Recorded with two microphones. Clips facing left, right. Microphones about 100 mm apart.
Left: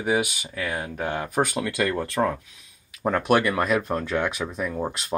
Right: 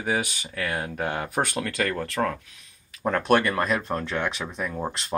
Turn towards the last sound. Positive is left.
turn(degrees=0)  # may be behind; listen again after turning